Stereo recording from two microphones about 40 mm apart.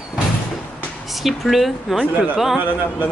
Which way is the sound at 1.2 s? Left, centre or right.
Centre.